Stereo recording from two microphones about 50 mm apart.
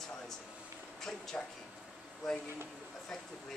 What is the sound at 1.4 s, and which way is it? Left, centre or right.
Speech, left.